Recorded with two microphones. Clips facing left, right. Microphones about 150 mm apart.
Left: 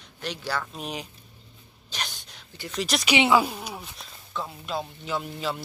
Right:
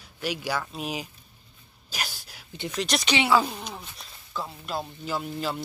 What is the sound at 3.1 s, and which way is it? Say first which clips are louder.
Speech: left 2 dB; 15° left (ahead or behind).